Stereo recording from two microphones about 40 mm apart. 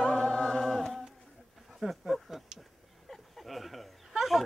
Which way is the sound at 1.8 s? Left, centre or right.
Centre.